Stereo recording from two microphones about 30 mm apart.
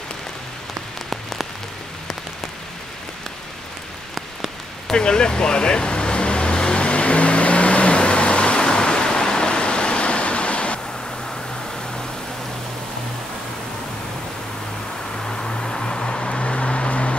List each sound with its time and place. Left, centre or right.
4.9 s vehicle: left
15.2 s vehicle: left